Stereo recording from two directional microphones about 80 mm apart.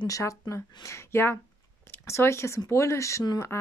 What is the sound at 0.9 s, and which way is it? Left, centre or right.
A woman's voice, left.